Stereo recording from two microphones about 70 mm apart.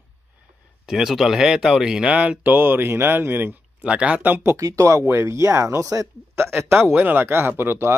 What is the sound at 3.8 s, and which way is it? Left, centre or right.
Speech, centre.